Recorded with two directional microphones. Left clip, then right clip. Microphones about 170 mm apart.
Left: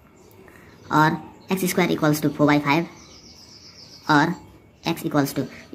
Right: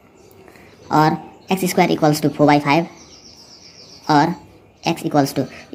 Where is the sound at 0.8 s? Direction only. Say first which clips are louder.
Right 3 dB; 5° right (ahead or behind).